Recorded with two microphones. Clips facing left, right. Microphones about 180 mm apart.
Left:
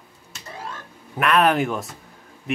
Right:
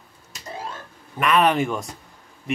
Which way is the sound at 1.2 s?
Centre (ahead or behind).